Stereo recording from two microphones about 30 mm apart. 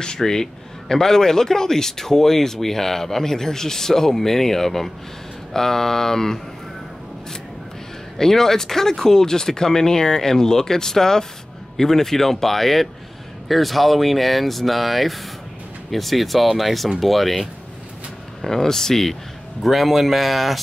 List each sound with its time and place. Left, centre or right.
0.0 s a man's voice: left
8.2 s a man's voice: centre
19.6 s speech: centre